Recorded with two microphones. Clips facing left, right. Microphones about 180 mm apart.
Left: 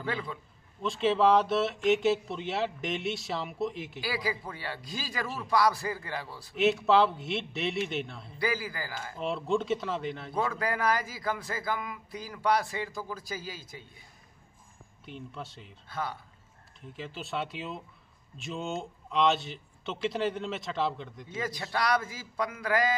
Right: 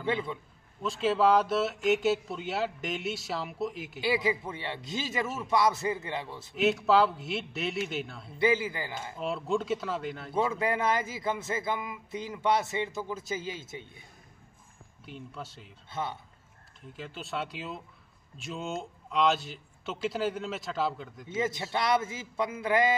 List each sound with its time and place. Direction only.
0.8 s speech: centre (ahead or behind)
4.0 s speech: 25° right (ahead or behind)
6.5 s speech: centre (ahead or behind)
8.4 s speech: 25° right (ahead or behind)
9.1 s speech: centre (ahead or behind)
10.3 s speech: 25° right (ahead or behind)
15.0 s speech: centre (ahead or behind)
15.9 s speech: 25° right (ahead or behind)
16.8 s speech: centre (ahead or behind)
21.3 s speech: 25° right (ahead or behind)